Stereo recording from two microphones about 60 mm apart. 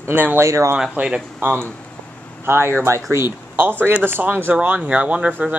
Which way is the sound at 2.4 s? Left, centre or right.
Right.